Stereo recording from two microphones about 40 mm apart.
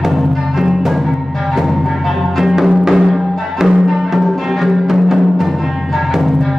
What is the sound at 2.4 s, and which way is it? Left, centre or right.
Music, centre.